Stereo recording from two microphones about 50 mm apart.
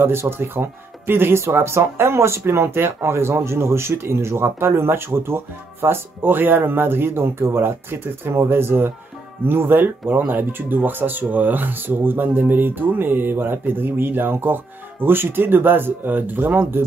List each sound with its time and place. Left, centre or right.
0.0 s speech: right